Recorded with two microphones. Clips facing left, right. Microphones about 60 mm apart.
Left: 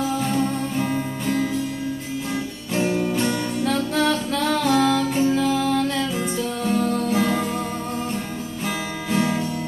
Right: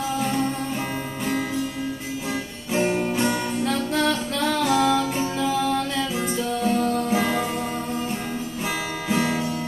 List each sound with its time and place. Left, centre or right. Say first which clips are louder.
0.2 s music: left 2 dB; centre
2.8 s music: left 1 dB; right
3.9 s music: left 2 dB; centre
9.1 s music: left 1 dB; centre